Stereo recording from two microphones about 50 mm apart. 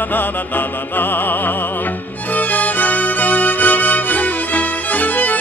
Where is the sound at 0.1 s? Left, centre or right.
Left.